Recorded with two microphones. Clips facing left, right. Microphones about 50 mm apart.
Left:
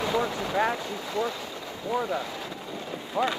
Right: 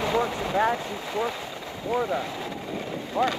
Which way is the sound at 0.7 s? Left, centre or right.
Right.